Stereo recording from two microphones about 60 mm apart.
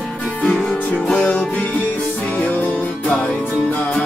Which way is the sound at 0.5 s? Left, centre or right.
Centre.